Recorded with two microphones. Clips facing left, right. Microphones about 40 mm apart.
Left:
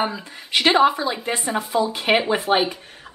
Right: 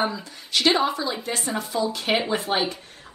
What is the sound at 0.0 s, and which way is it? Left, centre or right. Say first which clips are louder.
Speech: left 1 dB; left.